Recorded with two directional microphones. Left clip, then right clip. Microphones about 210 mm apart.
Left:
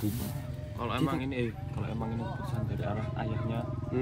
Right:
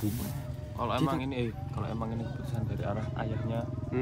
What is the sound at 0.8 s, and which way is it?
Speech, 55° right (ahead or behind).